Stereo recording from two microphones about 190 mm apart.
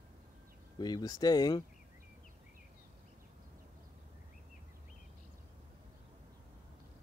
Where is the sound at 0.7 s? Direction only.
20° left (ahead or behind).